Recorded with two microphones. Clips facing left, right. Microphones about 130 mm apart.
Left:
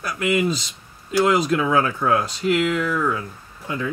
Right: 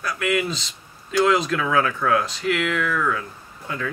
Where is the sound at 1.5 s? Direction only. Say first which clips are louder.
Left 2 dB; 25° left (ahead or behind).